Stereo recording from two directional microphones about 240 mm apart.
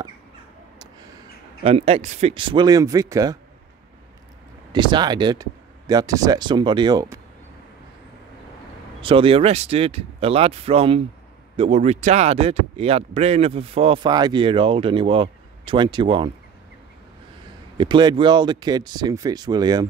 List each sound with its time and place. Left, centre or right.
1.6 s speech: right
4.7 s speech: centre
9.0 s speech: right
17.7 s speech: centre